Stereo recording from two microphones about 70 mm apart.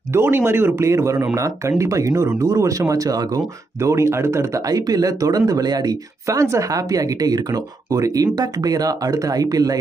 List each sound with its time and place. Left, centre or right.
0.1 s speech: right
6.2 s speech: right